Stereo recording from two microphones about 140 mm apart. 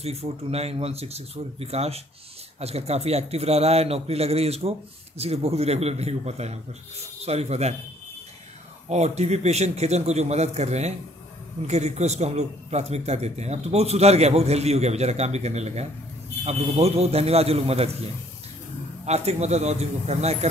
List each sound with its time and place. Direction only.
0.0 s a man's voice: 45° right (ahead or behind)
8.8 s a man's voice: 50° right (ahead or behind)
19.0 s a man's voice: 50° right (ahead or behind)